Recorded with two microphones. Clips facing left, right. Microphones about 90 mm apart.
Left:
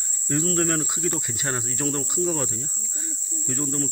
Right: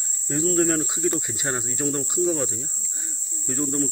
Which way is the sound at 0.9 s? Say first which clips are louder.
Right 3 dB; 20° right (ahead or behind).